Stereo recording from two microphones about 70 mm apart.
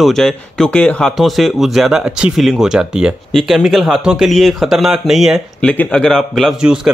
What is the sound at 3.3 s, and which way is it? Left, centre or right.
Speech, centre.